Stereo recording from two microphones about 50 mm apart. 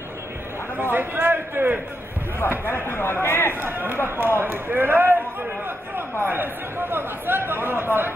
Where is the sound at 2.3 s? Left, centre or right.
Left.